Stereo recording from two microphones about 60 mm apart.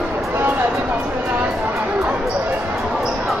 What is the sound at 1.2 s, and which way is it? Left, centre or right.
Chatter, right.